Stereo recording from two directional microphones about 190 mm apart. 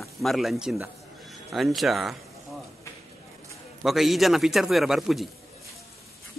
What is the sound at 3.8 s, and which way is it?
Speech, centre (ahead or behind).